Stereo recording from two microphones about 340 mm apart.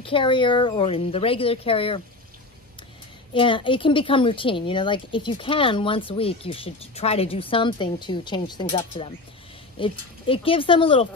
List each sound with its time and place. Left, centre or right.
0.0 s a woman's voice: centre
3.3 s a woman's voice: centre